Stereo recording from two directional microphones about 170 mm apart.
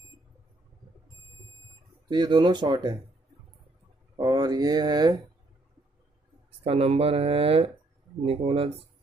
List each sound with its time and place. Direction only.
2.0 s speech: 25° right (ahead or behind)
4.2 s speech: 25° right (ahead or behind)
6.6 s speech: 35° right (ahead or behind)